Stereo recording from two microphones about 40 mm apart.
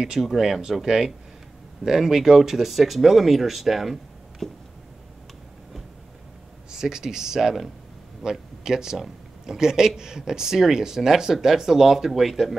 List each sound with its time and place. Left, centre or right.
0.0 s speech: centre
6.7 s speech: centre